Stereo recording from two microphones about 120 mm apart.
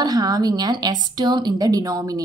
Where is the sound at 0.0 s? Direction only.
35° right (ahead or behind).